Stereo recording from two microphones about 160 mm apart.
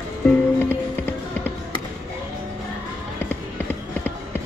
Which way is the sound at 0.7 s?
15° left (ahead or behind).